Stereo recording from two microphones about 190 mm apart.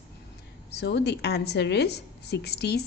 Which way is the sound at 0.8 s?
60° left (ahead or behind).